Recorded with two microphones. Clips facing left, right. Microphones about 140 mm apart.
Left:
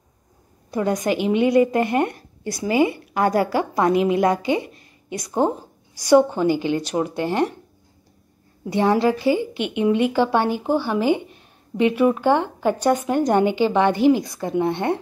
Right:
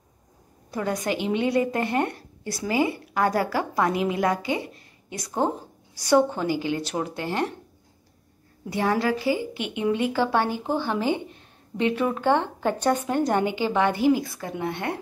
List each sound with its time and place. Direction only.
0.7 s a woman's voice: 20° left (ahead or behind)
8.6 s a woman's voice: 25° left (ahead or behind)